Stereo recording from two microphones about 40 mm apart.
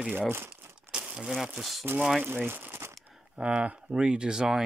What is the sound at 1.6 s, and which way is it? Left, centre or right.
Speech, centre.